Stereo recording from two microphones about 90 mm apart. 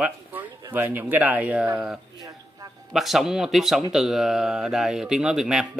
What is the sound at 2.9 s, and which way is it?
Speech, centre (ahead or behind).